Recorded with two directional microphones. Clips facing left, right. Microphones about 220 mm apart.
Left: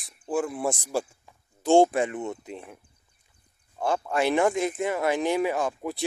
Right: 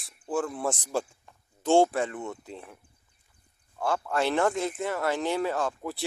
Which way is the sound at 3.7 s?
20° left (ahead or behind).